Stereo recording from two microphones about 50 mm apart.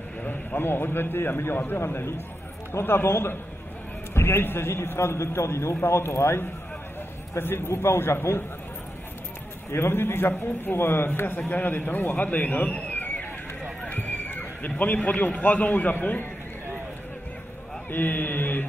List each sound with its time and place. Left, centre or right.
0.2 s a man's voice: left
2.8 s a man's voice: left
7.3 s a man's voice: left
9.7 s a man's voice: left
12.9 s a sound: left
13.8 s a man's voice: left
17.9 s a man's voice: left